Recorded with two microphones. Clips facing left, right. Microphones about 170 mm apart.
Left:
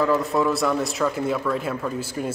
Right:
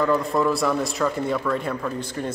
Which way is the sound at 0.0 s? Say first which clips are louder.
Even; centre (ahead or behind).